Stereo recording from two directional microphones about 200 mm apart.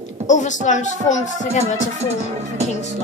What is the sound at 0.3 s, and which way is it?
Speech, 35° left (ahead or behind).